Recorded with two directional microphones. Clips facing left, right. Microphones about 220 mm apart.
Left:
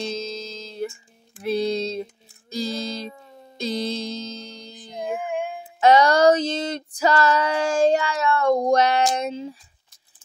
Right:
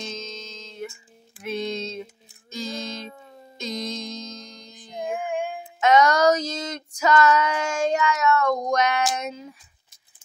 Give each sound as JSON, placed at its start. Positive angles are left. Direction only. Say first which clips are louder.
{"t": 0.0, "sound": "music", "louder": "left 6 dB", "side_deg": 35}
{"t": 4.9, "sound": "child singing", "louder": "left 1 dB", "side_deg": 0}
{"t": 5.8, "sound": "female singing", "louder": "left 2 dB", "side_deg": 30}